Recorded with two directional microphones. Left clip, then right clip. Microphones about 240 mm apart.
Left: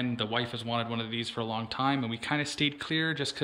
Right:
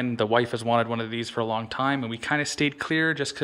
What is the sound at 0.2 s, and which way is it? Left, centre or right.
Speech, right.